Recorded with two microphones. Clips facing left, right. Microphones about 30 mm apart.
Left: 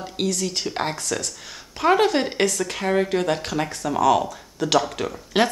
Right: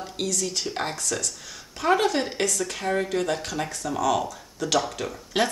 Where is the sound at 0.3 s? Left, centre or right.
Left.